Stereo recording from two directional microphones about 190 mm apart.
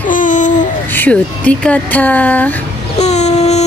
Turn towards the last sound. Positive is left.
turn(degrees=35)  # may be behind; listen again after turning